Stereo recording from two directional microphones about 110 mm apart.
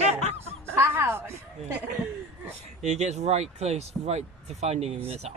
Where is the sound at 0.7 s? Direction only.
20° right (ahead or behind).